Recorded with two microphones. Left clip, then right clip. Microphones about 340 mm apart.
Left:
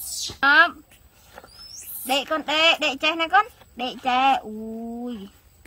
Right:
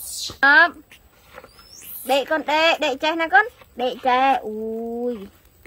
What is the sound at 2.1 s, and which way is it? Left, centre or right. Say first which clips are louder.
Speech: right 4 dB; left.